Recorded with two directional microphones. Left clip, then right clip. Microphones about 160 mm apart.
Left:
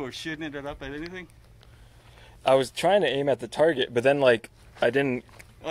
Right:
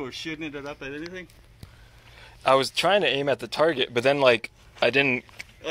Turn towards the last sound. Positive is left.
turn(degrees=5)  # may be behind; listen again after turning